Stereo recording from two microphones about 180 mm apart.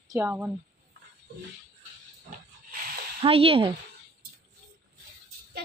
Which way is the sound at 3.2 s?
30° right (ahead or behind).